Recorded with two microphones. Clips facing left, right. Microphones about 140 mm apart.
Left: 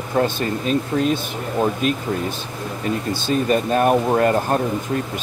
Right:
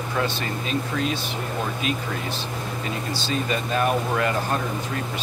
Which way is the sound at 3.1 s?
50° left (ahead or behind).